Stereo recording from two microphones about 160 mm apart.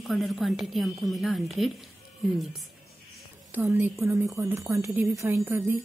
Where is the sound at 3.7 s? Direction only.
20° right (ahead or behind).